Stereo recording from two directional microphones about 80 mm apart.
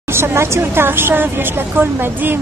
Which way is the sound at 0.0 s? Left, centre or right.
Right.